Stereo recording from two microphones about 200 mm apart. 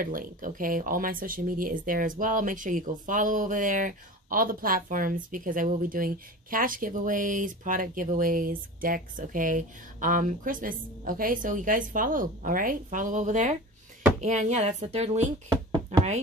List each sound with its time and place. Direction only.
0.0 s a woman's voice: 45° right (ahead or behind)
15.7 s knock: 30° right (ahead or behind)